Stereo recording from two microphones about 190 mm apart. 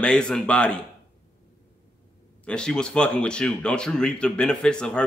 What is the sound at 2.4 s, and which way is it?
A man's voice, 5° left (ahead or behind).